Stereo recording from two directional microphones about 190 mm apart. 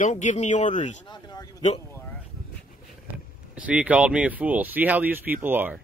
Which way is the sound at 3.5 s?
5° right (ahead or behind).